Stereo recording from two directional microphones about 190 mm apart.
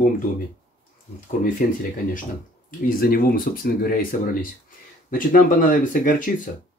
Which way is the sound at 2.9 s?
50° left (ahead or behind).